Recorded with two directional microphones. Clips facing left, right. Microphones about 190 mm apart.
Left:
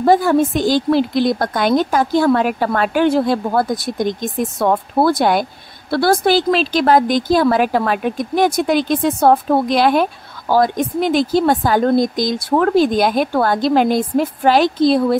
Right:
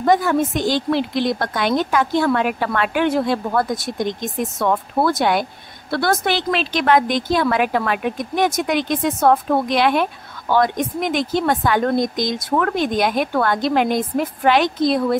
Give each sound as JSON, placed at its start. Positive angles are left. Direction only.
{"t": 0.0, "sound": "a woman's voice", "side_deg": 35}